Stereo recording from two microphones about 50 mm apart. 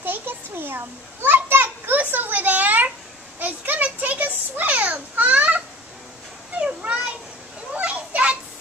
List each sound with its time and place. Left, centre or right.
0.0 s children playing: right
2.0 s a sound: right
6.8 s children playing: right